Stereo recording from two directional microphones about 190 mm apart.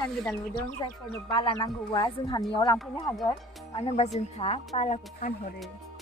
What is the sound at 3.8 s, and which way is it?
Speech, 35° left (ahead or behind).